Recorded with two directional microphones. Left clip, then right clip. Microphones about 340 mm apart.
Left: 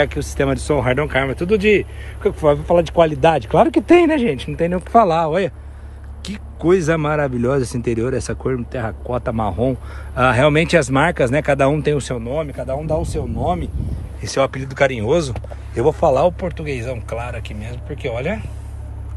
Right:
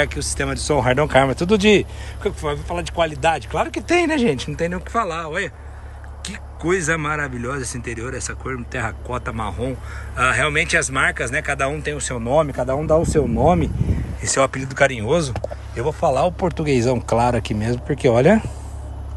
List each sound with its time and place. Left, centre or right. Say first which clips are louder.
0.0 s speech: left 3 dB; centre
2.4 s speech: left 10 dB; centre
12.3 s speech: right 8 dB; centre
14.2 s speech: even; centre
16.4 s speech: right 6 dB; centre